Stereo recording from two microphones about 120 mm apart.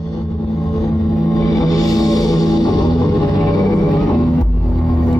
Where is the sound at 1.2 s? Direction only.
30° left (ahead or behind).